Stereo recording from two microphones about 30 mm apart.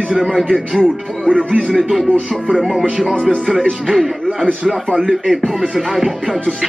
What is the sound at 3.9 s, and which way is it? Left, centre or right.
Speech, centre.